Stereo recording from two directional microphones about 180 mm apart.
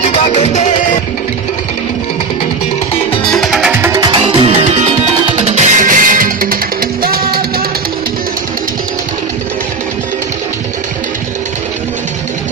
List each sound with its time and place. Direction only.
0.0 s music: 35° left (ahead or behind)
3.3 s music: centre (ahead or behind)
3.9 s music: 25° right (ahead or behind); by 7.2 s 55° right (ahead or behind)